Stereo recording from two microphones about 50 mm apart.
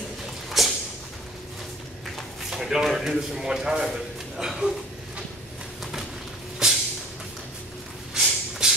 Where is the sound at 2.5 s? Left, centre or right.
Centre.